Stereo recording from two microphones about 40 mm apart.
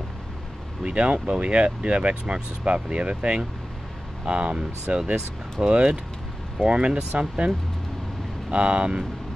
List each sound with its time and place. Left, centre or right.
0.8 s speech: right